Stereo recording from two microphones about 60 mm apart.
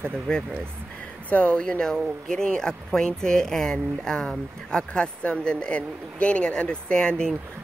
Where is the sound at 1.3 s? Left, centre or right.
Centre.